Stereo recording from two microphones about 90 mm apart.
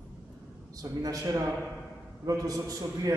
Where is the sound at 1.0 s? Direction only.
40° right (ahead or behind).